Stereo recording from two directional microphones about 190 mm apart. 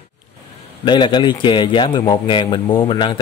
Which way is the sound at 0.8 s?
25° left (ahead or behind).